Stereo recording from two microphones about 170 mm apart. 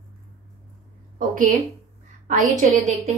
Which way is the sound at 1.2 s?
50° right (ahead or behind).